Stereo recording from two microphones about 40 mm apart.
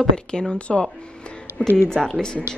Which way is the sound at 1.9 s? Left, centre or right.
Centre.